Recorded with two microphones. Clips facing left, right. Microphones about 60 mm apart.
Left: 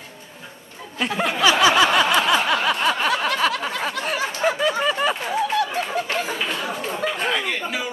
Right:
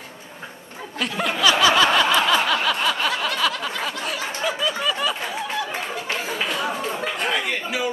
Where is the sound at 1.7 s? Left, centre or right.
Centre.